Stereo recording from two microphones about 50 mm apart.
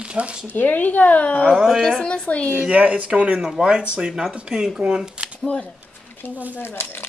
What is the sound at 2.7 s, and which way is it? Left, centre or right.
Speech, right.